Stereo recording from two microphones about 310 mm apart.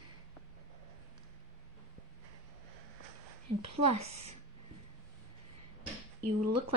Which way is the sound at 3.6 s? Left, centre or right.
Right.